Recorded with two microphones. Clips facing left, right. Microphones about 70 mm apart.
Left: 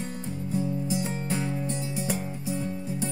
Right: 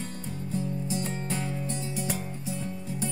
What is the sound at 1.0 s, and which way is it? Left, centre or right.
Music, centre.